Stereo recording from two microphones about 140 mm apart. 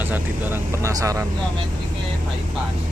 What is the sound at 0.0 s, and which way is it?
Speech, 15° right (ahead or behind).